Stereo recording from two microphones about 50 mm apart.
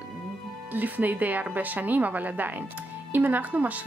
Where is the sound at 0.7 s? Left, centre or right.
Right.